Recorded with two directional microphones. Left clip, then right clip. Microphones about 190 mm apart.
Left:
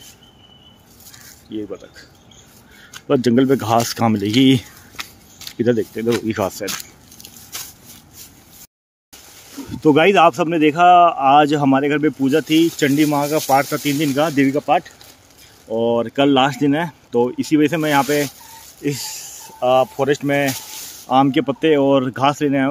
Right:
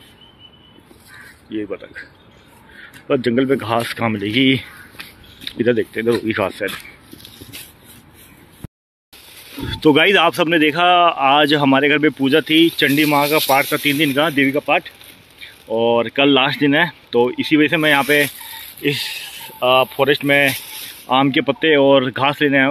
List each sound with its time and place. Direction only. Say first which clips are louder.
1.5 s speech: right 3 dB; 5° left (ahead or behind)
3.1 s speech: left 1 dB; 30° left (ahead or behind)
5.6 s speech: right 1 dB; 15° left (ahead or behind)
9.8 s speech: even; 5° left (ahead or behind)